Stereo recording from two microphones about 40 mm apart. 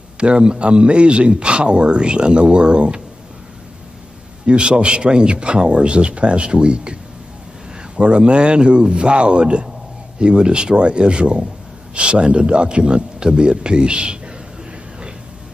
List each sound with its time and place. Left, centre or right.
0.2 s speech: right
4.5 s speech: right